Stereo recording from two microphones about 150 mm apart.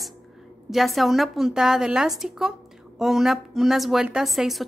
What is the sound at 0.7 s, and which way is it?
A woman's voice, centre (ahead or behind).